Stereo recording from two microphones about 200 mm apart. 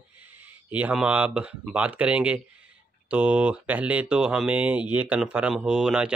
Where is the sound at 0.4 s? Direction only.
10° right (ahead or behind).